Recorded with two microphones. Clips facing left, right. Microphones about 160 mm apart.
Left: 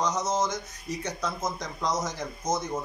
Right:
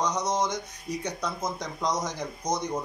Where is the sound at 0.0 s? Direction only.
15° right (ahead or behind).